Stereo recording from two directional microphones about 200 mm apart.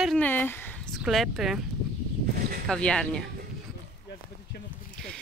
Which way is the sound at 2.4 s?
45° right (ahead or behind).